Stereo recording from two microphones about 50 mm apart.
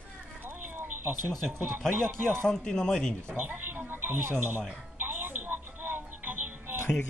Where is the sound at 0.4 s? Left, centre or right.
Right.